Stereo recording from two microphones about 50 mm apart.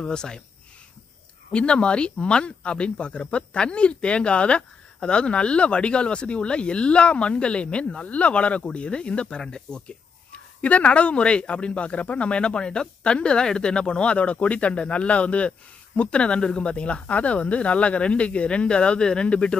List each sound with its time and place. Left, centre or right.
0.0 s speech: centre
1.5 s speech: left